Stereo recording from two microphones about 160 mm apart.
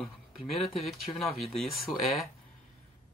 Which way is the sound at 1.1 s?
20° left (ahead or behind).